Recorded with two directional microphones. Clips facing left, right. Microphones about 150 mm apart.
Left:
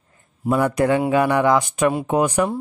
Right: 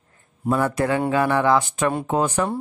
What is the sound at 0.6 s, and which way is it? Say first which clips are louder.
Speech: left 4 dB; 15° left (ahead or behind).